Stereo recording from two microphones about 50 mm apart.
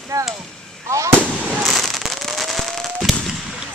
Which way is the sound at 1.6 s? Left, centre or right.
Centre.